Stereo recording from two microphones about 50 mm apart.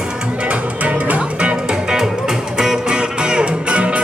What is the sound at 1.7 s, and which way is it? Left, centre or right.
Music, centre.